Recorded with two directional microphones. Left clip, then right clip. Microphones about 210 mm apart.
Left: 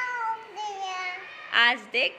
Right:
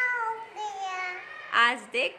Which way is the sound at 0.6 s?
15° right (ahead or behind).